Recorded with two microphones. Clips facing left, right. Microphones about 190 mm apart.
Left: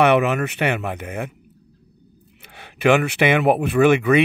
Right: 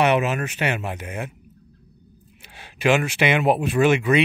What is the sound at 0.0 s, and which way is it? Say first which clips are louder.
Speech: left 3 dB; 60° left (ahead or behind).